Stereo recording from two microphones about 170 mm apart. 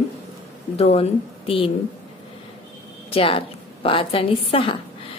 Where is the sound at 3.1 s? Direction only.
35° left (ahead or behind).